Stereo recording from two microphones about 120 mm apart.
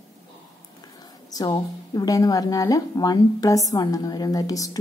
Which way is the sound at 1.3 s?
35° left (ahead or behind).